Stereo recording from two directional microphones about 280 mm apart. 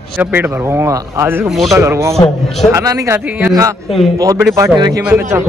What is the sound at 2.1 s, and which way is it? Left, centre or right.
Speech, centre.